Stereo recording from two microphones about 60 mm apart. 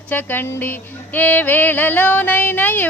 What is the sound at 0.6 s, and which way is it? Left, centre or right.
Music, left.